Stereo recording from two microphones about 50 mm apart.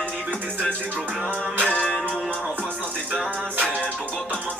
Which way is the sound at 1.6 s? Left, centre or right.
Centre.